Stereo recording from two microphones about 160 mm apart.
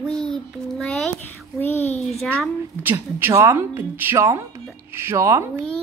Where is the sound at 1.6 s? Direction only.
40° left (ahead or behind).